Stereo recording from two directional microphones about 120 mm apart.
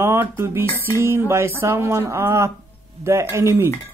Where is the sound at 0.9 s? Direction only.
20° right (ahead or behind).